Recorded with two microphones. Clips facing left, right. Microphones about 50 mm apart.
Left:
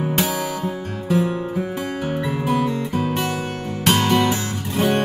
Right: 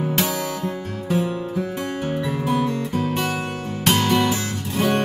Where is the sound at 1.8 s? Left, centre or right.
Centre.